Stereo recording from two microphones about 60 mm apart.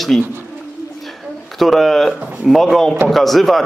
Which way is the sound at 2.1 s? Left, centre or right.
Right.